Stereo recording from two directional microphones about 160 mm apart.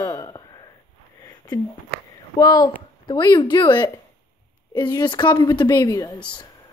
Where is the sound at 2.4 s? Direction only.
25° left (ahead or behind).